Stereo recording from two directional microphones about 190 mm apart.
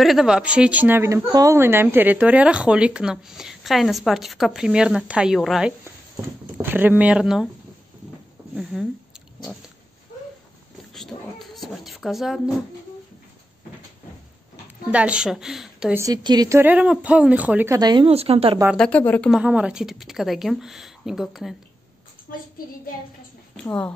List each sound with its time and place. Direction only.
0.0 s speech: centre (ahead or behind)
11.0 s speech: centre (ahead or behind)
14.9 s speech: 5° right (ahead or behind)
16.0 s speech: 20° right (ahead or behind)
17.7 s a woman's voice: 20° right (ahead or behind)
18.8 s speech: 5° left (ahead or behind)
19.4 s speech: 5° right (ahead or behind)
23.5 s a woman's voice: 5° left (ahead or behind)